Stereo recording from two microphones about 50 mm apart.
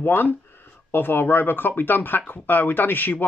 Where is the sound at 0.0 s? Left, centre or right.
Left.